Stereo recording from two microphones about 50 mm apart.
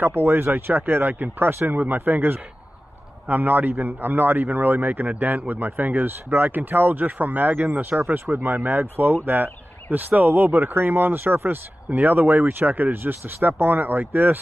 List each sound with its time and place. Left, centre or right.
0.0 s a man's voice: right